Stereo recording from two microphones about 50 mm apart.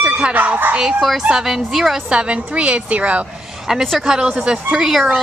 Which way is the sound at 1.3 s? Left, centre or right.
Centre.